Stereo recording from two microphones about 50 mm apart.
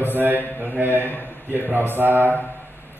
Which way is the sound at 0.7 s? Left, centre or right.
Right.